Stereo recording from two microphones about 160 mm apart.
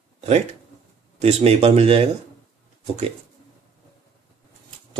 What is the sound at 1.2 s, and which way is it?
Speech, 40° right (ahead or behind).